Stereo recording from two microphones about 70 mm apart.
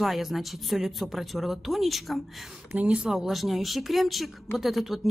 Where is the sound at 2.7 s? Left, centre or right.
Right.